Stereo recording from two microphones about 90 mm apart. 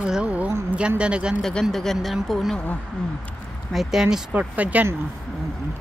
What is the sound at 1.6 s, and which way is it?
Speech, 5° left (ahead or behind).